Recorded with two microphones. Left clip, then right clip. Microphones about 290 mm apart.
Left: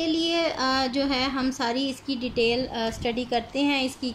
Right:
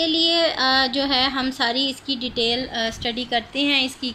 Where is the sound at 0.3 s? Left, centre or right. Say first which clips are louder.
Right 6 dB; centre.